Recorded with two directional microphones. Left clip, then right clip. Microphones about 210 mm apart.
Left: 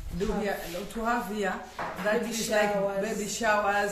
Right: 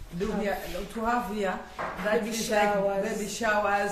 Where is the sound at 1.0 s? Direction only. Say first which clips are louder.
Right 1 dB; 10° left (ahead or behind).